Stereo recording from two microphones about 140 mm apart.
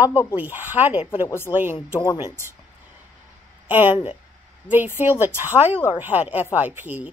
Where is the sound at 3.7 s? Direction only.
15° right (ahead or behind).